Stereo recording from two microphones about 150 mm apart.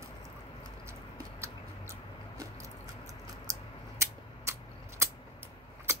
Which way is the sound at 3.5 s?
20° right (ahead or behind).